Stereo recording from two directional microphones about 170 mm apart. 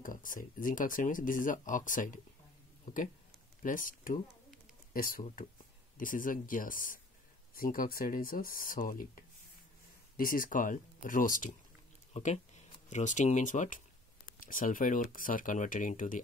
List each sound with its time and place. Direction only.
0.0 s speech: 50° left (ahead or behind)
10.1 s speech: 55° left (ahead or behind)
12.1 s a sound: 45° left (ahead or behind)
12.9 s speech: 45° left (ahead or behind)